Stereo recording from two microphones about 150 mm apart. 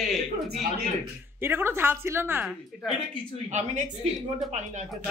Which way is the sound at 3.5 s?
50° right (ahead or behind).